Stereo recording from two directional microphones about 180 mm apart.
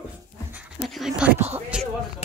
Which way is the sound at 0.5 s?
Centre (ahead or behind).